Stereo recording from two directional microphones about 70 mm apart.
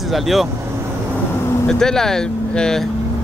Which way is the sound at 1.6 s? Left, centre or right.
Centre.